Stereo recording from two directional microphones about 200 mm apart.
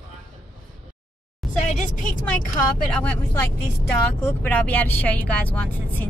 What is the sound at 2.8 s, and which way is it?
Speech, 5° left (ahead or behind).